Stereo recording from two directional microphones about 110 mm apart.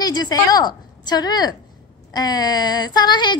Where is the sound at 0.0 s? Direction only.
40° left (ahead or behind).